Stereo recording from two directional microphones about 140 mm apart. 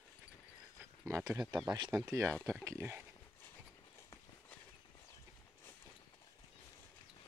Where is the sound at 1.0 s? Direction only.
20° right (ahead or behind).